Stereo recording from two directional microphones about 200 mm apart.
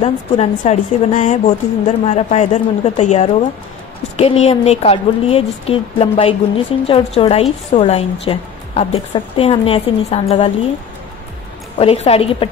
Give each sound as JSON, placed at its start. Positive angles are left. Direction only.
{"t": 0.0, "sound": "a woman's voice", "side_deg": 30}
{"t": 11.8, "sound": "a woman's voice", "side_deg": 30}